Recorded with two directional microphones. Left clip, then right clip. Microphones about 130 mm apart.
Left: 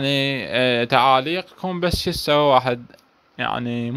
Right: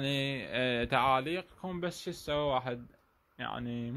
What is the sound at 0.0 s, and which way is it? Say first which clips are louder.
Speech: left 13 dB; 25° left (ahead or behind).